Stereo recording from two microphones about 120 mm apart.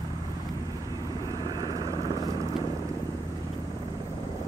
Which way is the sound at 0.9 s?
30° right (ahead or behind).